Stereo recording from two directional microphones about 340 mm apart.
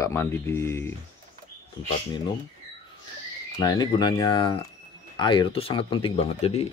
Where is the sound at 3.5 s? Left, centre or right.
Centre.